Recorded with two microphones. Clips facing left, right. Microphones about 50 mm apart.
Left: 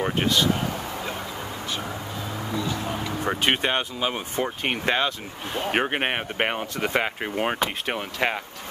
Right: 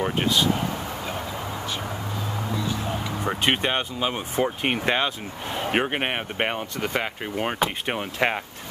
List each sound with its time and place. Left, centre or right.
0.0 s speech: centre
3.3 s speech: centre
5.7 s speech: centre
7.5 s speech: centre